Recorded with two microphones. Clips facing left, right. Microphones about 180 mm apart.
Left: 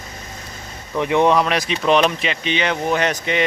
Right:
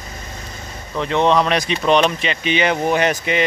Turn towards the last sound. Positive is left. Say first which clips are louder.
# right 2 dB
turn(degrees=-5)  # may be behind; listen again after turning